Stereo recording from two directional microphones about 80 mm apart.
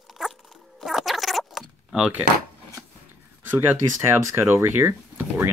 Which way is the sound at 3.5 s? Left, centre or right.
Right.